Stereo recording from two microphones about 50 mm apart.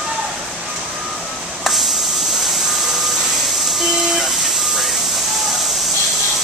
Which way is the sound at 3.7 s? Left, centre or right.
Centre.